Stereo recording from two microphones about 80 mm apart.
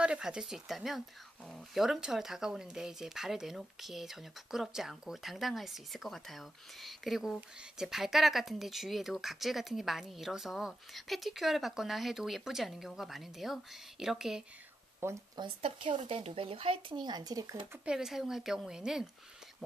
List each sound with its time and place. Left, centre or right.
0.0 s speech: centre
15.0 s speech: right
15.3 s speech: right
17.8 s speech: centre